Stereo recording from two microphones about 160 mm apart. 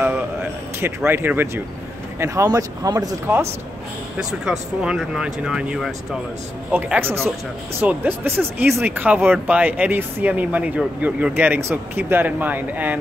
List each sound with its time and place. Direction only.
0.0 s a sound: 10° right (ahead or behind)
2.1 s speech: 15° right (ahead or behind)
4.2 s speech: 5° right (ahead or behind)